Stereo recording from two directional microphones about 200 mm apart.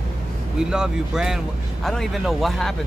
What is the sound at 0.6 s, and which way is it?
Speech, 5° right (ahead or behind).